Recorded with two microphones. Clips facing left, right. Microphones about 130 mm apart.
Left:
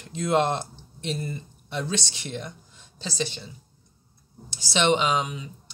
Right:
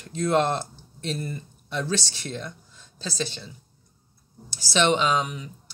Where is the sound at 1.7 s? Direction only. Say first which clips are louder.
Right 2 dB; 20° left (ahead or behind).